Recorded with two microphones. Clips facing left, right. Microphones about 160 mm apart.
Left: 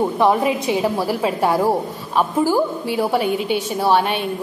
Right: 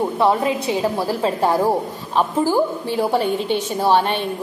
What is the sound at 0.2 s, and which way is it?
A woman's voice, 15° left (ahead or behind).